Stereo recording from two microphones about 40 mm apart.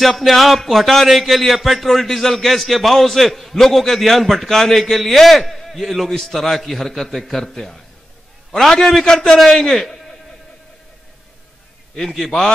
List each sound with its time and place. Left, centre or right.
0.0 s a man's voice: centre
12.1 s a man's voice: centre